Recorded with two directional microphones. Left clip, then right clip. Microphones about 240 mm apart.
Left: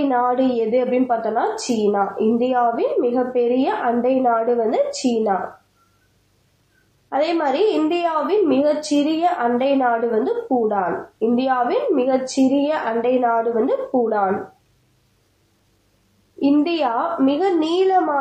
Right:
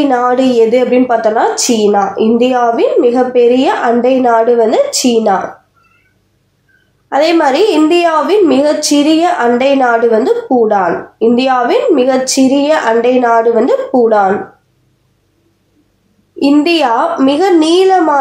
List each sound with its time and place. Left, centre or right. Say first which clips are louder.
0.1 s a woman's voice: right 8 dB; right
7.1 s a woman's voice: right 10 dB; right
16.3 s a woman's voice: right 9 dB; right